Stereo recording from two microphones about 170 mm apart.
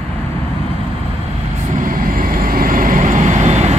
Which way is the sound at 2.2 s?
55° right (ahead or behind).